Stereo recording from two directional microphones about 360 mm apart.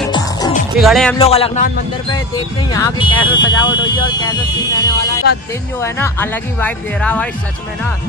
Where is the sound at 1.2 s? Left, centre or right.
Centre.